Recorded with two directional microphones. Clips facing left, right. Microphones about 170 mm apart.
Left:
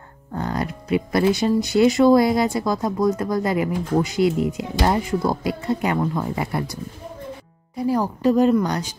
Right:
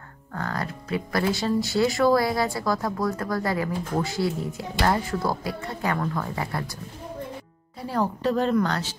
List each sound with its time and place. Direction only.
0.3 s speech: 20° left (ahead or behind)